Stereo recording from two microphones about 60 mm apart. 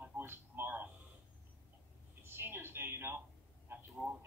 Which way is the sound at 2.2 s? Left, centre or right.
Right.